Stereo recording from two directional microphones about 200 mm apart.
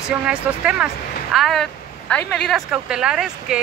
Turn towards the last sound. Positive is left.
turn(degrees=-5)  # may be behind; listen again after turning